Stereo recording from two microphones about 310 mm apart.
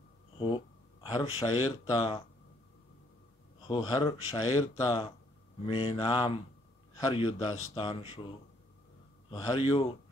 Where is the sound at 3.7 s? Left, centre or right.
Centre.